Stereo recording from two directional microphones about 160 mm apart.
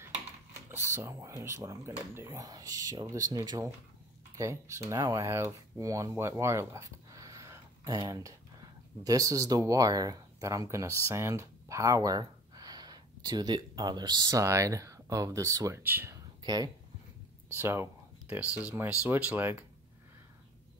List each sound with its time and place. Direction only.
0.9 s speech: 20° right (ahead or behind)
16.4 s speech: 25° right (ahead or behind)
17.6 s speech: 15° right (ahead or behind)